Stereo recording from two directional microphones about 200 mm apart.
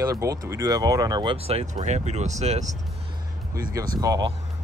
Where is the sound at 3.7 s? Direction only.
20° right (ahead or behind).